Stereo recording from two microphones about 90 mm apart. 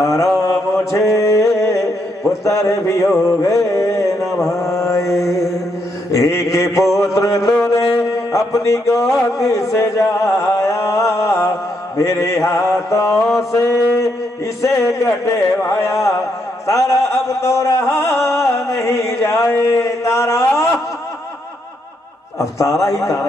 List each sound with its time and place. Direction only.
0.0 s mantra: 35° left (ahead or behind)
2.4 s music: 35° left (ahead or behind)
3.3 s a sound: 35° left (ahead or behind)
4.6 s mantra: 35° left (ahead or behind)
7.0 s music: 35° left (ahead or behind)
10.4 s a sound: 30° left (ahead or behind)
12.0 s music: 35° left (ahead or behind)
19.1 s a man's voice: 30° left (ahead or behind)
22.4 s music: 35° left (ahead or behind)